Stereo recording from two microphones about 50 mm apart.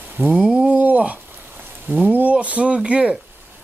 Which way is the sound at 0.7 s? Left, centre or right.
Right.